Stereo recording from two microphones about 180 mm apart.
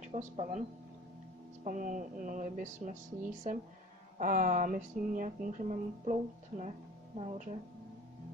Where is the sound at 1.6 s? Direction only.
45° right (ahead or behind).